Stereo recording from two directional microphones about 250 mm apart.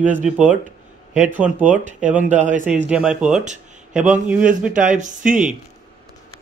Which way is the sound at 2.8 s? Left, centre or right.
Centre.